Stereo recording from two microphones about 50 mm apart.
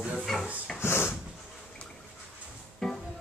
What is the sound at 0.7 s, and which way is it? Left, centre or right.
Dog, left.